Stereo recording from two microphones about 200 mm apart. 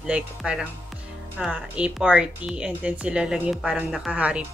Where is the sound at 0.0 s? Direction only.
5° right (ahead or behind).